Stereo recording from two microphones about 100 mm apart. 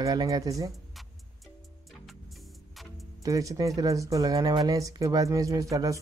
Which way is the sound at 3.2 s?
35° right (ahead or behind).